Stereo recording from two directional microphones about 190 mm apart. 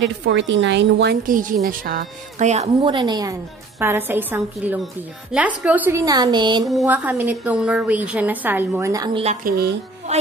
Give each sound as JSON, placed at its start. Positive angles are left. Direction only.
{"t": 0.0, "sound": "a woman's voice", "side_deg": -70}
{"t": 1.2, "sound": "speech", "side_deg": -45}
{"t": 2.7, "sound": "a woman's voice", "side_deg": -25}
{"t": 6.7, "sound": "a woman's voice", "side_deg": -5}
{"t": 9.2, "sound": "speech", "side_deg": -35}